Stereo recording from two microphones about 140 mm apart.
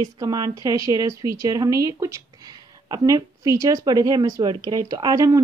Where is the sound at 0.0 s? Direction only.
25° right (ahead or behind).